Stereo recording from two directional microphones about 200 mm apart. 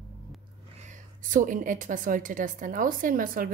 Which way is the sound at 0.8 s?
40° right (ahead or behind).